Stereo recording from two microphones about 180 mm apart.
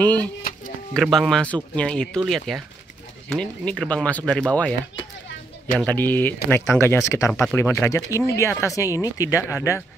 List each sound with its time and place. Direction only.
0.0 s speech: 10° left (ahead or behind)
5.8 s speech: 10° left (ahead or behind)